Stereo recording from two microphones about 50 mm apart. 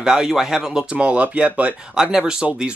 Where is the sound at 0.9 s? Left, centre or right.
Right.